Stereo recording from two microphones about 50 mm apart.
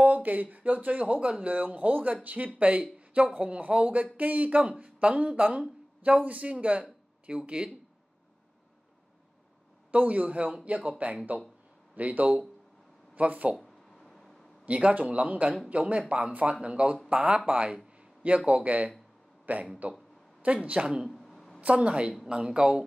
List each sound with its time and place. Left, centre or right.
0.0 s speech: right
9.8 s speech: right
13.6 s a sound: centre
14.7 s speech: right
21.1 s a sound: centre
21.5 s a woman's voice: right